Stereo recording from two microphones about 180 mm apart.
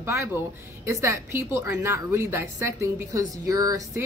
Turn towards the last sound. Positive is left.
turn(degrees=-20)  # may be behind; listen again after turning